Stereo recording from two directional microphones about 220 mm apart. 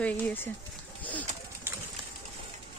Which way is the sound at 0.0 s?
10° left (ahead or behind).